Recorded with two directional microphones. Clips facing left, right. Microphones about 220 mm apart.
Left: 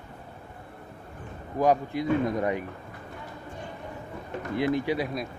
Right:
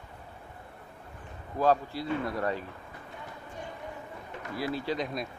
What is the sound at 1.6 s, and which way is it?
Speech, 15° left (ahead or behind).